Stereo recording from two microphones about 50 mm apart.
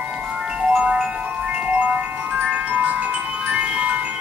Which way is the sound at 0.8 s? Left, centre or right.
Right.